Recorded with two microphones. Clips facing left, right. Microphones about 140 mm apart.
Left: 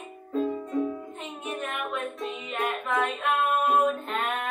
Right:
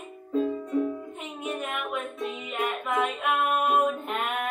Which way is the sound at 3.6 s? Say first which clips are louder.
Left 1 dB; 15° right (ahead or behind).